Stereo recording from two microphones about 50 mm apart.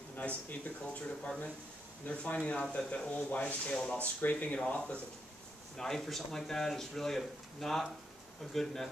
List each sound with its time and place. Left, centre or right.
0.1 s speech: left
3.3 s rub: left
3.7 s speech: centre
4.0 s speech: left
5.8 s speech: centre